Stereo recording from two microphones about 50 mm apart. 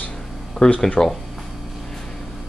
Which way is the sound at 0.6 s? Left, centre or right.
Centre.